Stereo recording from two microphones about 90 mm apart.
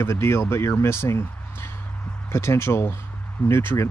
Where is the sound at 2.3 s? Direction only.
30° left (ahead or behind).